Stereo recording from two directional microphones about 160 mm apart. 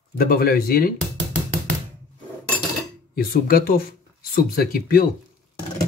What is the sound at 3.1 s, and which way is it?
Speech, 70° left (ahead or behind).